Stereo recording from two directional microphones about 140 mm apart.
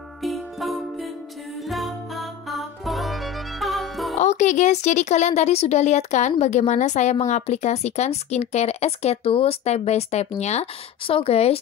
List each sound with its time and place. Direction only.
0.2 s music: centre (ahead or behind)
4.1 s speech: 55° left (ahead or behind)